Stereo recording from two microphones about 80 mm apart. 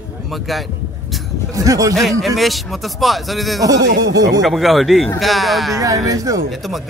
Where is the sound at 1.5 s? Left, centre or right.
Right.